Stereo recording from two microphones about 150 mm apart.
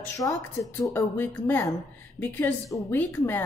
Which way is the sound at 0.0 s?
20° left (ahead or behind).